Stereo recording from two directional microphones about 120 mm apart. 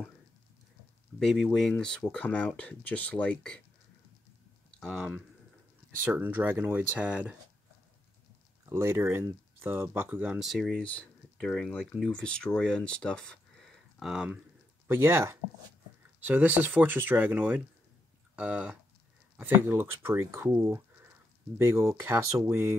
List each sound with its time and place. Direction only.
1.2 s speech: centre (ahead or behind)
4.7 s speech: centre (ahead or behind)
5.9 s speech: 15° right (ahead or behind)
8.6 s speech: 20° right (ahead or behind)
10.4 s speech: centre (ahead or behind)
13.9 s speech: 5° right (ahead or behind)
14.9 s speech: 20° right (ahead or behind)